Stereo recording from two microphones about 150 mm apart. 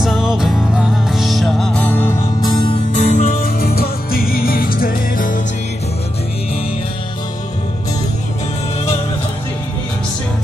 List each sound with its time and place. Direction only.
0.0 s music: 5° right (ahead or behind); by 2.2 s 15° left (ahead or behind)
2.4 s music: 30° left (ahead or behind)
2.9 s music: 65° left (ahead or behind)